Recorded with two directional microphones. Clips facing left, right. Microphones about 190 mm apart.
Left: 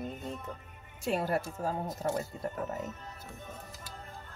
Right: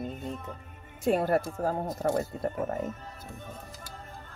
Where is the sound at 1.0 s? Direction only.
55° right (ahead or behind).